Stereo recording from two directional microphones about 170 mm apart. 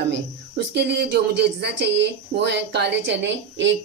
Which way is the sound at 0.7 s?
80° right.